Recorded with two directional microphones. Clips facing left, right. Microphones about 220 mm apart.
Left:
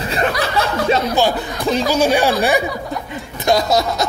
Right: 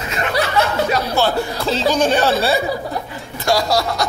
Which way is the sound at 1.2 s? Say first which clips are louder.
Even; 15° left (ahead or behind).